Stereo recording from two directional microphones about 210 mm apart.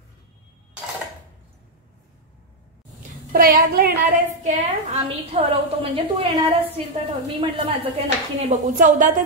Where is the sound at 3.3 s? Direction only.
45° right (ahead or behind); by 6.2 s 25° right (ahead or behind).